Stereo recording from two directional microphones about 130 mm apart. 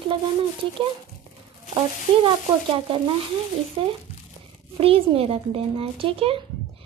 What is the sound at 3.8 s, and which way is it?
A child's voice, 40° right (ahead or behind).